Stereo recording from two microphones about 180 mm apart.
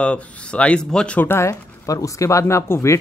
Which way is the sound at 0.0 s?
5° left (ahead or behind).